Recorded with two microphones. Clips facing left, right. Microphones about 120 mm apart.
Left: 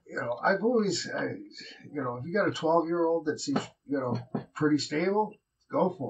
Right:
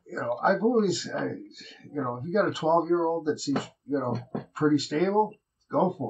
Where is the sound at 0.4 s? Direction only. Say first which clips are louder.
Right 3 dB; 20° right (ahead or behind).